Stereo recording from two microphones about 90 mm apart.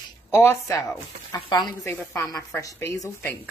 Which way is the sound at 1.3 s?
50° left (ahead or behind).